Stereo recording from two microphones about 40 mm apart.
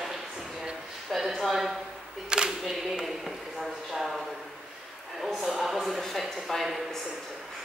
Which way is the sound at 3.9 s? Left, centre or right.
Centre.